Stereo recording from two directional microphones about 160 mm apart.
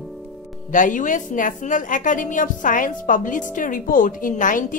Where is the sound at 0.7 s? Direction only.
55° left (ahead or behind).